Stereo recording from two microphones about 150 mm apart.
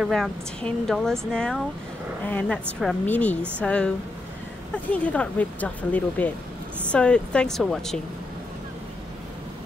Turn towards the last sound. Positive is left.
turn(degrees=5)  # may be behind; listen again after turning